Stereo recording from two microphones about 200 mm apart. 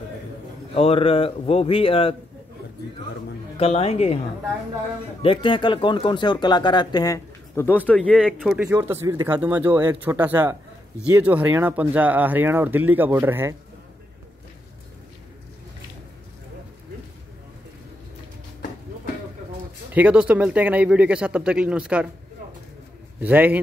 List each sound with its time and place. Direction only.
0.7 s speech: 30° left (ahead or behind)
3.5 s speech: 30° left (ahead or behind)
5.2 s speech: 25° left (ahead or behind); by 8.5 s 5° left (ahead or behind)
8.5 s speech: 10° right (ahead or behind)
19.9 s speech: 5° right (ahead or behind)
23.2 s speech: 10° right (ahead or behind)